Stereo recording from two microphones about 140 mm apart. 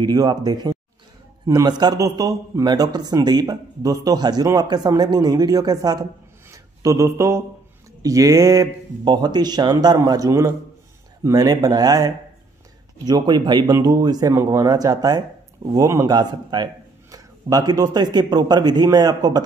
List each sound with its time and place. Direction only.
0.0 s a man's voice: 30° right (ahead or behind)